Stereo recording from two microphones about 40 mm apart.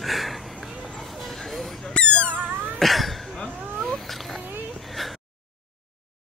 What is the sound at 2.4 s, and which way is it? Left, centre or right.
Cat, right.